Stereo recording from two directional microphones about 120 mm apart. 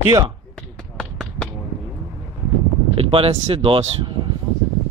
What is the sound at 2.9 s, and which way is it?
Speech, 50° right (ahead or behind).